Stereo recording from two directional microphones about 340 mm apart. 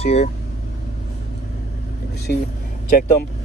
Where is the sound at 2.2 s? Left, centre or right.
Left.